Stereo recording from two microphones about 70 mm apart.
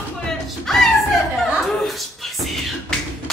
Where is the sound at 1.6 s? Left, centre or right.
Centre.